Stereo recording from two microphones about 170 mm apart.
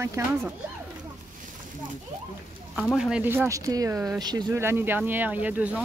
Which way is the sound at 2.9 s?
5° right (ahead or behind).